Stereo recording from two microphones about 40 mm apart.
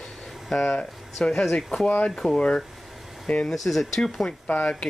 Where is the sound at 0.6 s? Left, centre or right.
Left.